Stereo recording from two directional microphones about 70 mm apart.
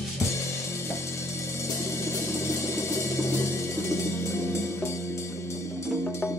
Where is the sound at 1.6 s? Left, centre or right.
Left.